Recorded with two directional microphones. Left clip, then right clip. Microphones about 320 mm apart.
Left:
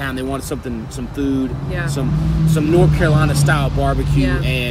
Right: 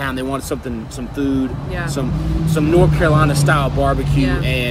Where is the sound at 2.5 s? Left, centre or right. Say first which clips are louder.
Right 1 dB; centre.